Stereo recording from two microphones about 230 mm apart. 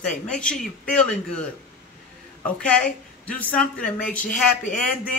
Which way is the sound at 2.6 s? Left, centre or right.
Centre.